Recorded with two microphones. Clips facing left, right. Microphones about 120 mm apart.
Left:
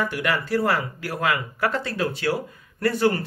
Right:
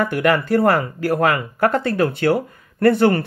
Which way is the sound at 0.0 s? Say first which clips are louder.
Right 7 dB; 50° right (ahead or behind).